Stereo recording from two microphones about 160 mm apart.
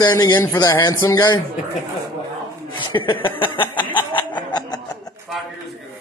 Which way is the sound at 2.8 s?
30° left (ahead or behind).